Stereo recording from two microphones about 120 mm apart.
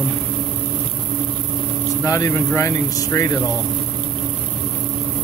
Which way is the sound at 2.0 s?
25° left (ahead or behind).